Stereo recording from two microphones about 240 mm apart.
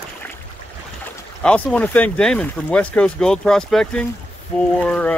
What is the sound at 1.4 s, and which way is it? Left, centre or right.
Speech, centre.